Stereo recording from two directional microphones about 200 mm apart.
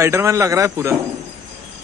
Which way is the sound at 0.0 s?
15° right (ahead or behind).